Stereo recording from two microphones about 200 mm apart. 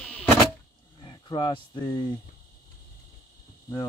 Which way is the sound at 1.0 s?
20° left (ahead or behind).